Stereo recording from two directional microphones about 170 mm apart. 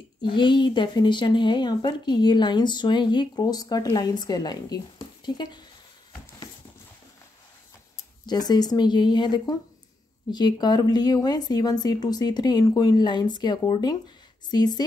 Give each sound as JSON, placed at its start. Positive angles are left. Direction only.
{"t": 0.2, "sound": "speech", "side_deg": 30}
{"t": 8.3, "sound": "speech", "side_deg": 25}